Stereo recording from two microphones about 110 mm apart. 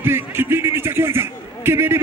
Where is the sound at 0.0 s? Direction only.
20° right (ahead or behind).